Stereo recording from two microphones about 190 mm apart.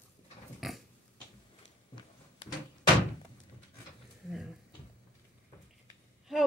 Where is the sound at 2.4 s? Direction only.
30° left (ahead or behind).